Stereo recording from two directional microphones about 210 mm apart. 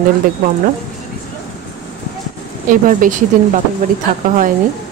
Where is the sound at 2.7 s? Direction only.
40° right (ahead or behind).